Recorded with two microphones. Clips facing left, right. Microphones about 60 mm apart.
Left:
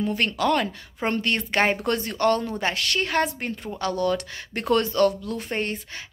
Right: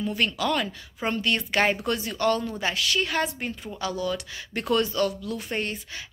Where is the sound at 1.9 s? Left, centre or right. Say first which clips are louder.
Left 3 dB; left.